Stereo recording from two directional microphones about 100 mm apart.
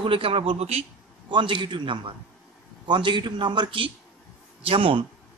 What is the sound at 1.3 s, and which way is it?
A man's voice, 55° right (ahead or behind).